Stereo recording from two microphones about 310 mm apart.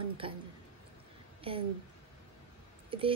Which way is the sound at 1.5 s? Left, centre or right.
Centre.